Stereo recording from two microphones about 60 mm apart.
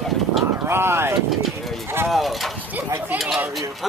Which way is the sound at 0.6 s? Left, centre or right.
Right.